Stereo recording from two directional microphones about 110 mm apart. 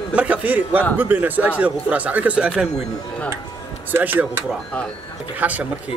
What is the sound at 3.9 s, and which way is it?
Speech, 15° right (ahead or behind).